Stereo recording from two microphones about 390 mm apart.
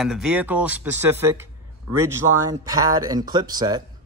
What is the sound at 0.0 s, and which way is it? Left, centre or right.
Speech, centre.